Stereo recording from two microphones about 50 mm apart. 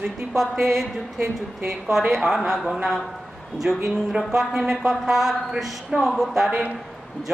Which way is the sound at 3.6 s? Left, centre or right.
Right.